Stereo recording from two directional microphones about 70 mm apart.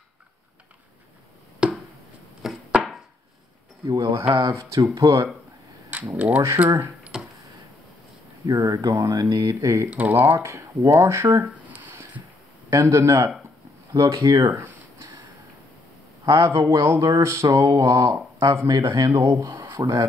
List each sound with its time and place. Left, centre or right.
1.6 s a sound: centre
2.4 s chopping: centre
3.8 s speech: right
5.9 s speech: right
7.1 s a sound: centre
8.5 s speech: right
9.8 s speech: right
10.2 s speech: right
11.4 s a sound: right
12.6 s speech: right
16.3 s speech: right
18.1 s speech: right
18.7 s speech: right